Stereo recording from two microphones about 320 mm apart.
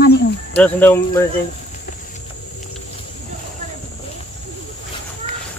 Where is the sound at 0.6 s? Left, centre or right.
Centre.